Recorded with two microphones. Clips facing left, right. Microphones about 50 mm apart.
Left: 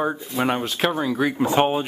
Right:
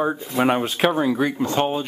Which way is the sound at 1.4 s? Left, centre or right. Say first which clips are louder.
Left 2 dB; centre.